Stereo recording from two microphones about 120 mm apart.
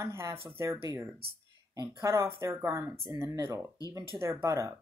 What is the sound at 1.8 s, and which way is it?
Speech, 25° right (ahead or behind).